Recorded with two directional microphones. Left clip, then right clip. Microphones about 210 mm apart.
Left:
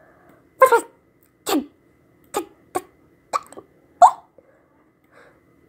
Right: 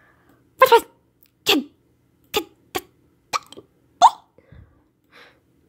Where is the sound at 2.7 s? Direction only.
60° right (ahead or behind).